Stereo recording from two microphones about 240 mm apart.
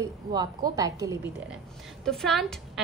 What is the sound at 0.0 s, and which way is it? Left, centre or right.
A woman's voice, centre.